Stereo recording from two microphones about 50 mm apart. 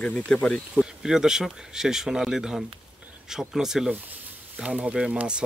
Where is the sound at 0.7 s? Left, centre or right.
Centre.